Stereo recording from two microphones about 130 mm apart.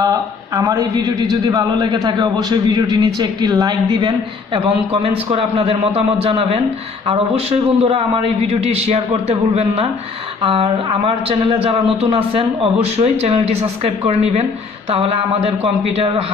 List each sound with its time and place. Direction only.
0.0 s a man's voice: 30° right (ahead or behind)
5.0 s speech: 45° right (ahead or behind)
10.4 s speech: 45° right (ahead or behind)